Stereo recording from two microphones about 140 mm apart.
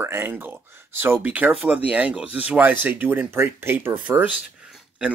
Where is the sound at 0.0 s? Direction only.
15° right (ahead or behind).